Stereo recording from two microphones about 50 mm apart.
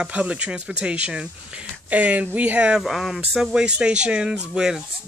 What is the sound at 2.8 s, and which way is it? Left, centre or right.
Speech, centre.